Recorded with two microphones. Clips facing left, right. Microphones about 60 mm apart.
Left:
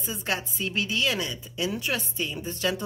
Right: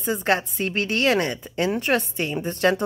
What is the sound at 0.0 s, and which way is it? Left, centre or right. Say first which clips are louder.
A woman's voice: right 8 dB; right.